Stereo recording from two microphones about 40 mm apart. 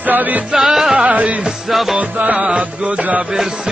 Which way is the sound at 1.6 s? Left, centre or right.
Centre.